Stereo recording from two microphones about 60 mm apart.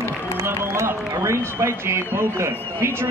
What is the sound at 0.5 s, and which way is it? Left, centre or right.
A man's voice, right.